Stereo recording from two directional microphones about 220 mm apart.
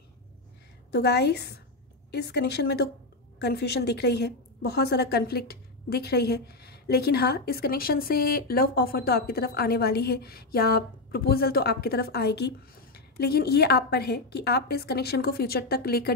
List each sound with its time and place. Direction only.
0.9 s a woman's voice: 45° left (ahead or behind)